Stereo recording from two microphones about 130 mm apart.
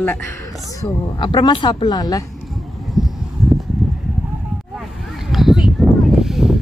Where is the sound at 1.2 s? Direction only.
35° left (ahead or behind).